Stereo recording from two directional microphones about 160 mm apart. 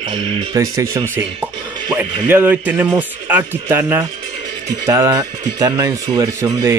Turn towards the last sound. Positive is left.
turn(degrees=-25)  # may be behind; listen again after turning